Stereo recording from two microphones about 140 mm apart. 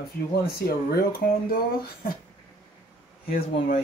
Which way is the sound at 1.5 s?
90° left.